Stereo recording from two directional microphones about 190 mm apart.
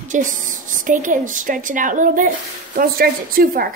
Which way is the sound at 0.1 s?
45° right (ahead or behind).